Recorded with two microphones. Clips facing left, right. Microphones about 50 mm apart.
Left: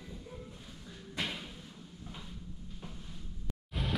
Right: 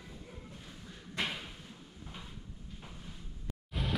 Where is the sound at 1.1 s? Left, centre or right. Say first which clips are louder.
Right 1 dB; centre.